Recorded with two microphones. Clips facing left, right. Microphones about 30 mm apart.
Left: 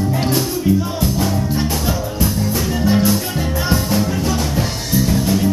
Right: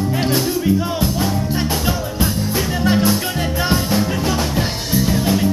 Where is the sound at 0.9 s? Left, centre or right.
Centre.